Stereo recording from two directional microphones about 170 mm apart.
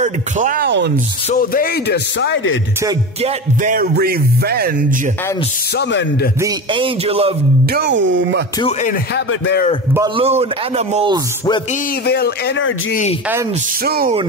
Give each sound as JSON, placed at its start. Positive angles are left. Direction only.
{"t": 0.0, "sound": "speech", "side_deg": -50}
{"t": 0.7, "sound": "speech", "side_deg": -90}
{"t": 1.3, "sound": "speech", "side_deg": 60}
{"t": 3.2, "sound": "a man's voice", "side_deg": -40}
{"t": 3.7, "sound": "speech", "side_deg": -60}
{"t": 5.8, "sound": "speech", "side_deg": 90}
{"t": 6.4, "sound": "a man's voice", "side_deg": -30}
{"t": 7.7, "sound": "speech", "side_deg": -90}
{"t": 9.1, "sound": "speech", "side_deg": 80}
{"t": 10.1, "sound": "a man's voice", "side_deg": -35}
{"t": 12.1, "sound": "speech", "side_deg": 75}
{"t": 13.8, "sound": "speech", "side_deg": -65}